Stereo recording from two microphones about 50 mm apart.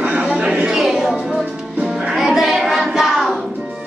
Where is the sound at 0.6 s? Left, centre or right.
Centre.